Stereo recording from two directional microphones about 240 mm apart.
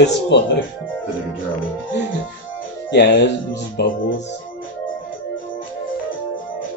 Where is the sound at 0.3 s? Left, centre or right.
Left.